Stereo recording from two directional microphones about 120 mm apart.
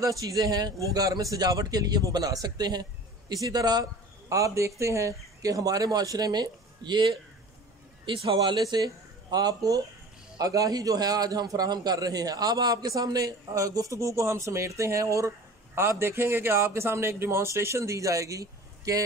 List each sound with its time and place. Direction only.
0.0 s a man's voice: 30° right (ahead or behind)